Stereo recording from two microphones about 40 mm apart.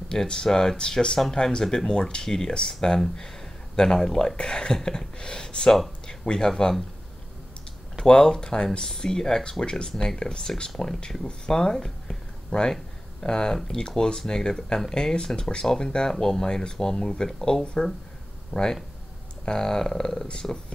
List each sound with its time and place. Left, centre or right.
0.1 s speech: centre
8.0 s speech: centre
11.8 s a sound: centre
12.7 s speech: centre